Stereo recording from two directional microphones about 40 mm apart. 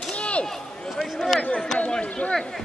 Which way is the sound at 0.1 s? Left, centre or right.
Left.